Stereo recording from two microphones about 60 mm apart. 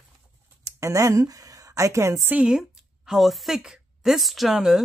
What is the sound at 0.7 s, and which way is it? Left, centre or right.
A woman's voice, right.